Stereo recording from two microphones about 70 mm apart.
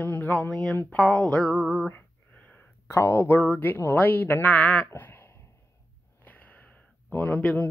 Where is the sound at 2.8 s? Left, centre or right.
Left.